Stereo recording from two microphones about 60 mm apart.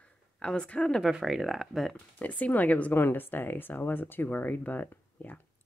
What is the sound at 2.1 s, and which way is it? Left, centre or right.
Speech, left.